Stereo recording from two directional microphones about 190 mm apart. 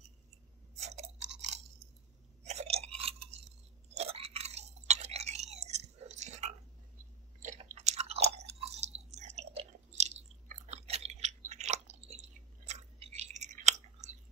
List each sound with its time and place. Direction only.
0.7 s chewing: 35° right (ahead or behind)
2.4 s chewing: 35° right (ahead or behind)